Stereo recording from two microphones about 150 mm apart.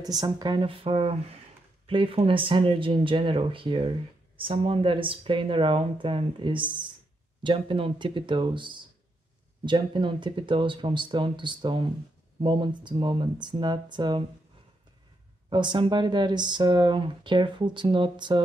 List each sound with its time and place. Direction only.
0.0 s speech: 25° right (ahead or behind)
15.5 s speech: 30° right (ahead or behind)